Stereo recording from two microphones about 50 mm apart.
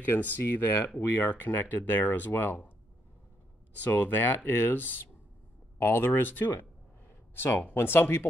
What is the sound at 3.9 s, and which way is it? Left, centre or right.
Speech, left.